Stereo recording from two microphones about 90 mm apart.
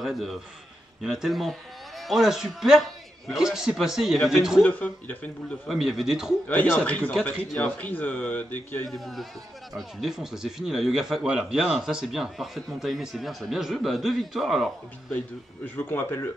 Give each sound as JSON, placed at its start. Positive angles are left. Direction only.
{"t": 0.0, "sound": "a man's voice", "side_deg": 0}
{"t": 4.6, "sound": "speech", "side_deg": 20}
{"t": 5.7, "sound": "a man's voice", "side_deg": -5}
{"t": 6.4, "sound": "speech", "side_deg": 20}
{"t": 8.8, "sound": "a man's voice", "side_deg": 0}
{"t": 15.0, "sound": "speech", "side_deg": 20}